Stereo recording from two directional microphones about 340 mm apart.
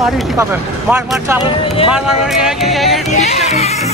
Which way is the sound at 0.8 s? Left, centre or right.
Centre.